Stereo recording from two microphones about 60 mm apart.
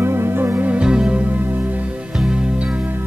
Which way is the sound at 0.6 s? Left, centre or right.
Centre.